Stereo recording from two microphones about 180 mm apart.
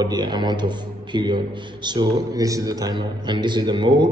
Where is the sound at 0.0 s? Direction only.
25° right (ahead or behind).